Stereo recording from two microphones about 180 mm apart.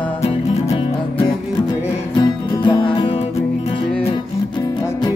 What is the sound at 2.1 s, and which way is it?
Music, 25° left (ahead or behind).